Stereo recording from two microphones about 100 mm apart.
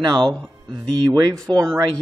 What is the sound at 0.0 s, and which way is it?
Speech, 50° right (ahead or behind).